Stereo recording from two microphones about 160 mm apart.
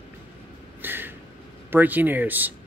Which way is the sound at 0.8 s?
10° right (ahead or behind).